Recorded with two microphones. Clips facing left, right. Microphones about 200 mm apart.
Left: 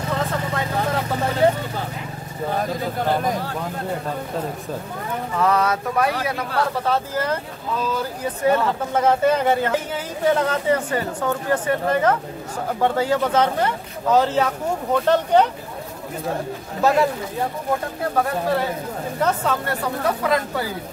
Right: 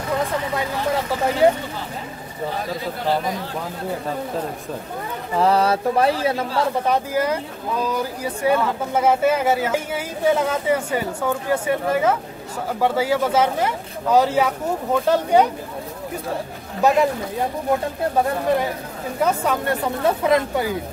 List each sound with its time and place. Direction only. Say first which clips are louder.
2.5 s speech: left 5 dB; 50° left (ahead or behind)
5.3 s mantra: right 3 dB; 30° right (ahead or behind)
6.2 s speech: right 3 dB; 25° right (ahead or behind)
16.8 s speech: right 1 dB; 15° right (ahead or behind)
18.1 s speech: right 1 dB; 15° right (ahead or behind)